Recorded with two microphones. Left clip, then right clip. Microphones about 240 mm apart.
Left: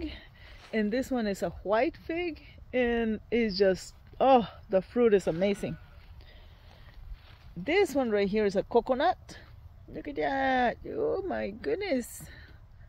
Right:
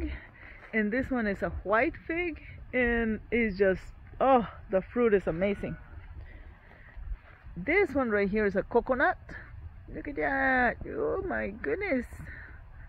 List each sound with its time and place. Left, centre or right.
0.0 s a woman's voice: left
7.6 s speech: left